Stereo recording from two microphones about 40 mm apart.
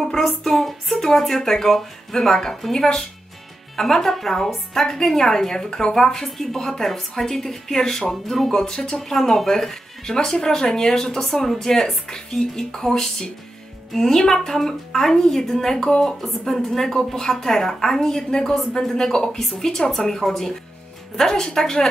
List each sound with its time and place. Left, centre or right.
0.0 s speech: centre
8.5 s speech: centre
9.1 s speech: centre